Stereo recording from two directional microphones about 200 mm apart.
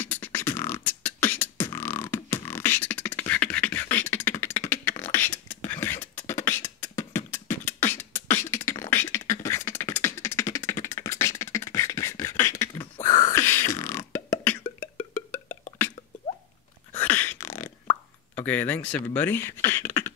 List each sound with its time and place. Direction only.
0.0 s beatboxing: 10° left (ahead or behind)
14.8 s a sound: 10° left (ahead or behind)
16.9 s plop: 10° left (ahead or behind)